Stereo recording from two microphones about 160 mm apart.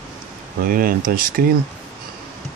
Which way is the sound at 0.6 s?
65° right (ahead or behind).